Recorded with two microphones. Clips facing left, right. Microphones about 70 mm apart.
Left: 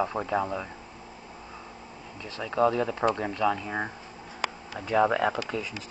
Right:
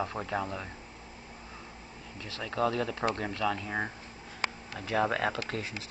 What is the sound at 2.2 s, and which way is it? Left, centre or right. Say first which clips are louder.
Speech: left 6 dB; left.